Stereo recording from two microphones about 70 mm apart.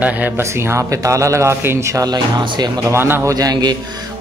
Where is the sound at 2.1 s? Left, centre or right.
Right.